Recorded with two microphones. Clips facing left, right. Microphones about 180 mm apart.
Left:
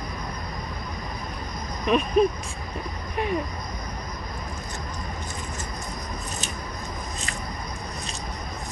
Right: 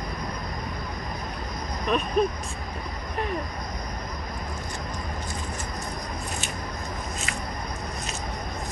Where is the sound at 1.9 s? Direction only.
Centre (ahead or behind).